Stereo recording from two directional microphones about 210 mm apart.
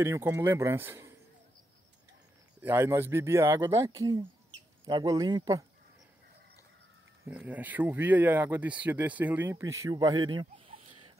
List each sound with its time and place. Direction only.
0.0 s speech: 15° right (ahead or behind)
2.6 s speech: 10° right (ahead or behind)
7.2 s speech: 5° right (ahead or behind)